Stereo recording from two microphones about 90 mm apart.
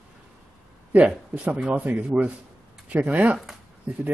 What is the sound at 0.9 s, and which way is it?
Speech, 15° right (ahead or behind).